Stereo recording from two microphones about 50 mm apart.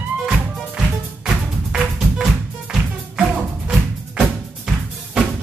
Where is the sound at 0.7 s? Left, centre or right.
Centre.